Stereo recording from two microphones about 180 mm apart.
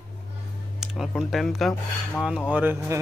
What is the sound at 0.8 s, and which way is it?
Speech, centre (ahead or behind).